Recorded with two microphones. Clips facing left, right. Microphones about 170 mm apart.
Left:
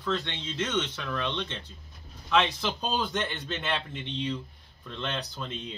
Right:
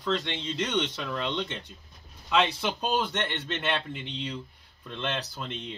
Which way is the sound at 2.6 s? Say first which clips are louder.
Right 2 dB; 5° right (ahead or behind).